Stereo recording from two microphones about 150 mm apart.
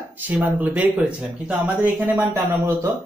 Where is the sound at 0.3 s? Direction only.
10° right (ahead or behind).